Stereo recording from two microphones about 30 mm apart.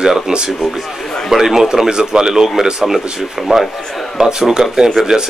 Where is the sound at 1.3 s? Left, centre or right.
Centre.